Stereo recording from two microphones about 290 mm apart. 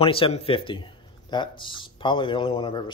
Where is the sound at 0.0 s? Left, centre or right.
Centre.